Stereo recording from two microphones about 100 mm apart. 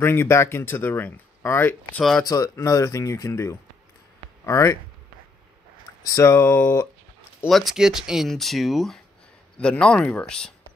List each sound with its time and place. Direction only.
0.0 s speech: 25° left (ahead or behind)
2.0 s speech: 5° left (ahead or behind)
2.2 s speech: 40° left (ahead or behind)
6.1 s speech: 25° left (ahead or behind)
7.4 s speech: centre (ahead or behind)